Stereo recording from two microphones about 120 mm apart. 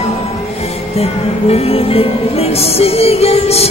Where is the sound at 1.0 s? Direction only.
60° left (ahead or behind).